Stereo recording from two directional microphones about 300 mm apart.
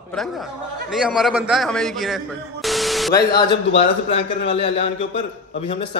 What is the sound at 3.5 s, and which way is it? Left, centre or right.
A man's voice, centre.